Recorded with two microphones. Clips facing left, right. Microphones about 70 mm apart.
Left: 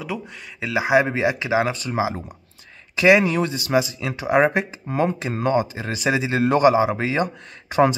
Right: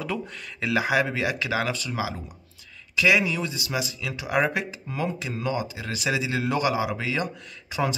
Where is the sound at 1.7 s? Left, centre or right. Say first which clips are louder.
Left 5 dB; left.